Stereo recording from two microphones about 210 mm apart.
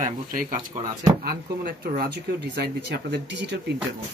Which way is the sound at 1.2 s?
45° right (ahead or behind).